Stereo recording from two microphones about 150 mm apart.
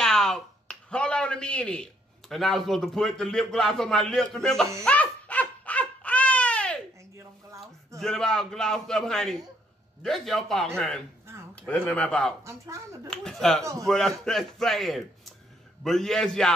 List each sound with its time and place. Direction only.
0.0 s a man's voice: 5° left (ahead or behind)
4.8 s dog: 10° left (ahead or behind)
8.0 s a man's voice: 5° left (ahead or behind)
12.4 s speech: 20° right (ahead or behind)
13.1 s a man's voice: 5° left (ahead or behind)